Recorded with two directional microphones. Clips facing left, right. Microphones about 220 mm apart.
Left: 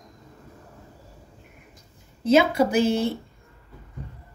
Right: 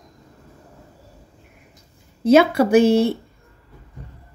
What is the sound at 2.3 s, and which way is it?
Speech, 60° right (ahead or behind).